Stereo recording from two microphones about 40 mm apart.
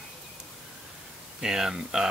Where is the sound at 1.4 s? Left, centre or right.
Centre.